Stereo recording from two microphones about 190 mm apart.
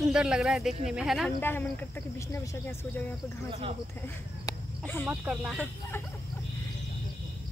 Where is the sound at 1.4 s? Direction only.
10° left (ahead or behind).